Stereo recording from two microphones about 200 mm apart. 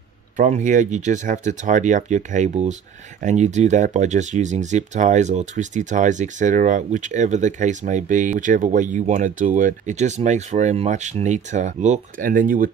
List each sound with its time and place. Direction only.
0.4 s speech: 35° right (ahead or behind)